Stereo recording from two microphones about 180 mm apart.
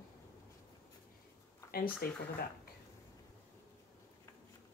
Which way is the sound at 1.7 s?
55° left (ahead or behind).